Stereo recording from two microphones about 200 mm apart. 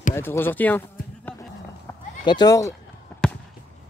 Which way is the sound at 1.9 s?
15° left (ahead or behind).